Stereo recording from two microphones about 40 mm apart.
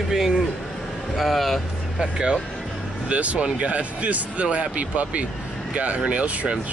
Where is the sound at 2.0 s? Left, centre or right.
Centre.